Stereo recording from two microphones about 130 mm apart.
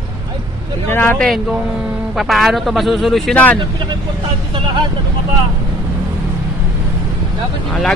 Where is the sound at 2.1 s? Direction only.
Centre (ahead or behind).